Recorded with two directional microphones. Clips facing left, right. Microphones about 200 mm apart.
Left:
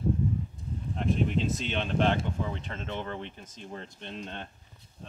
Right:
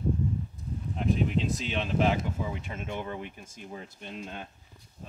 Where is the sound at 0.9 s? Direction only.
Centre (ahead or behind).